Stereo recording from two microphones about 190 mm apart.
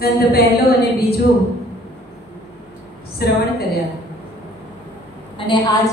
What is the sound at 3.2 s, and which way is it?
Speech, 55° left (ahead or behind).